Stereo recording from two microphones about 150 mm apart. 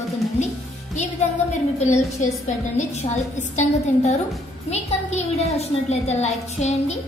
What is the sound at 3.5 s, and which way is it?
A woman's voice, 50° left (ahead or behind).